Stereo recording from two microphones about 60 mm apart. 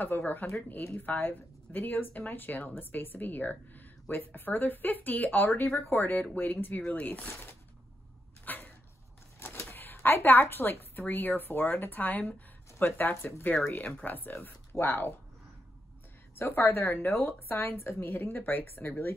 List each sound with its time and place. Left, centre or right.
0.0 s speech: left
8.5 s a sound: left
9.7 s a woman's voice: left
13.6 s speech: left
16.3 s speech: left